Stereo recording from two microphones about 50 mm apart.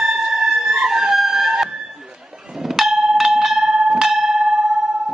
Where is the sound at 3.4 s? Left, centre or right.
Centre.